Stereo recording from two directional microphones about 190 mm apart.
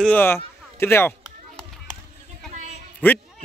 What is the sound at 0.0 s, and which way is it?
Speech, 10° left (ahead or behind).